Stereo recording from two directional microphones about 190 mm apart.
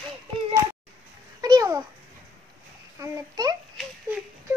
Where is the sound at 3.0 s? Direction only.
20° right (ahead or behind).